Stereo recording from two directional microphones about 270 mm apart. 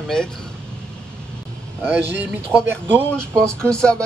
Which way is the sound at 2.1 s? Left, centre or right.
Centre.